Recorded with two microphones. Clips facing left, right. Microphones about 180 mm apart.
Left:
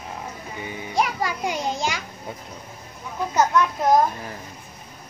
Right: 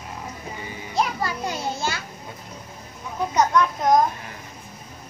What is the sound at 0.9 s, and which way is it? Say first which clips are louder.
Children playing: left 1 dB; 15° left (ahead or behind).